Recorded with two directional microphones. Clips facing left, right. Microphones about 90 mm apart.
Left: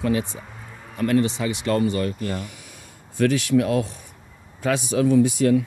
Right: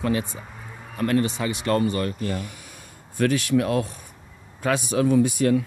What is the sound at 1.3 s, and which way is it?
Speech, 45° right (ahead or behind).